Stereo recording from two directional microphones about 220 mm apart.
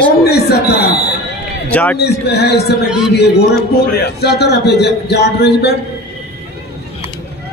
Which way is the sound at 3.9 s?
45° left (ahead or behind).